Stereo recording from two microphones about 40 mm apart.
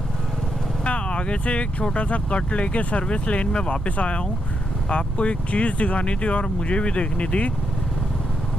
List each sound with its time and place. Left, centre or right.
0.8 s speech: left